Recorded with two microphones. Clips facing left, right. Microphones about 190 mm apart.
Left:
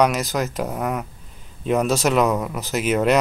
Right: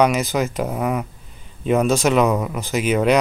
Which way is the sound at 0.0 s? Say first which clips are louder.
Right 2 dB; centre (ahead or behind).